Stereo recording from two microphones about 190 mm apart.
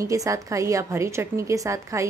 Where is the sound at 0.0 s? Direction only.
15° right (ahead or behind).